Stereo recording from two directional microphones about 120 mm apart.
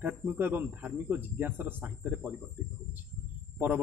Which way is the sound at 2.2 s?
10° right (ahead or behind).